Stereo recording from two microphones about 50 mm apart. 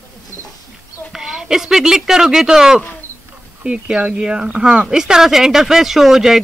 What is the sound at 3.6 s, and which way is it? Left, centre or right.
A man's voice, right.